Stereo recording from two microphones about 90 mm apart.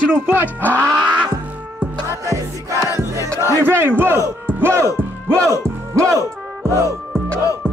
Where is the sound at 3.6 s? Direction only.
25° right (ahead or behind).